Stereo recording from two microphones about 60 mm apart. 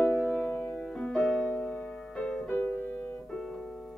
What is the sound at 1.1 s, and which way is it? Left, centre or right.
Music, centre.